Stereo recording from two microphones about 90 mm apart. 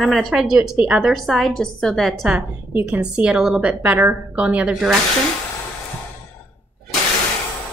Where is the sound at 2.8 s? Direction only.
10° right (ahead or behind).